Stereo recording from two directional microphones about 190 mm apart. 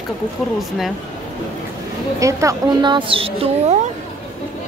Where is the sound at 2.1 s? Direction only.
15° right (ahead or behind).